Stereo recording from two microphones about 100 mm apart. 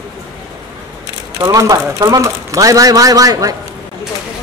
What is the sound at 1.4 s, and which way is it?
A man's voice, 35° right (ahead or behind).